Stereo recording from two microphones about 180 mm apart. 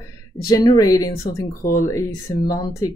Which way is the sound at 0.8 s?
20° left (ahead or behind).